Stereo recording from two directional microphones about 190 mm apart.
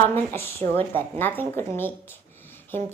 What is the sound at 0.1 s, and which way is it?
A woman's voice, 10° left (ahead or behind).